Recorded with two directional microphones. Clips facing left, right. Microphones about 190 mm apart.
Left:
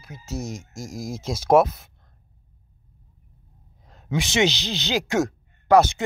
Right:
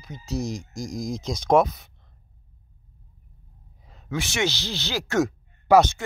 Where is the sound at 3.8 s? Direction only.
Centre (ahead or behind).